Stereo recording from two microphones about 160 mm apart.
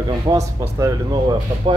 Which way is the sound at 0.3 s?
20° right (ahead or behind).